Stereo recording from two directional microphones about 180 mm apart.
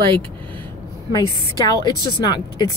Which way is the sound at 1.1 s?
20° left (ahead or behind).